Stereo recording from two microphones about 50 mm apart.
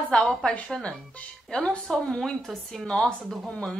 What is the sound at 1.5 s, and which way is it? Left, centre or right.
A woman's voice, centre.